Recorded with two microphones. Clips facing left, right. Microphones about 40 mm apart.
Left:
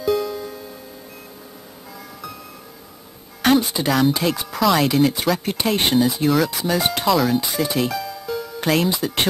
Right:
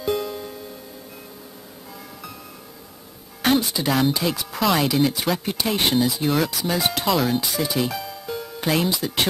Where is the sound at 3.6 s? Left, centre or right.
Centre.